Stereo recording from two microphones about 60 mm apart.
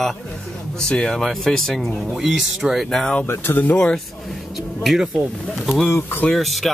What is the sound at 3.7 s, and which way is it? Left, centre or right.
Speech, centre.